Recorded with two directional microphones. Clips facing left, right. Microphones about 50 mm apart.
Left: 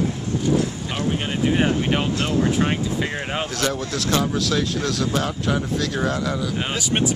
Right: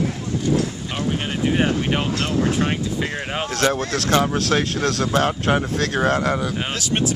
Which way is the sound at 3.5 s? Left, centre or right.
Right.